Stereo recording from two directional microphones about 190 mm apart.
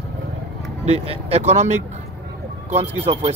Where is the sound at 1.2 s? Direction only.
35° right (ahead or behind).